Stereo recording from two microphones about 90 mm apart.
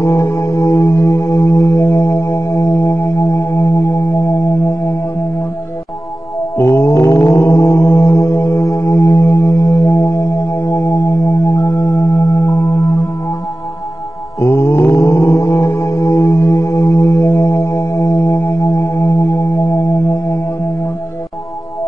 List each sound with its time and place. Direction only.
0.0 s music: 30° left (ahead or behind)
6.5 s mantra: 30° left (ahead or behind)
14.4 s mantra: 25° left (ahead or behind)